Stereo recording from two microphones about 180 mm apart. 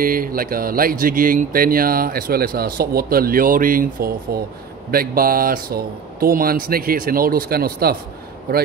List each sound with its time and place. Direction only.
0.0 s speech: 50° right (ahead or behind)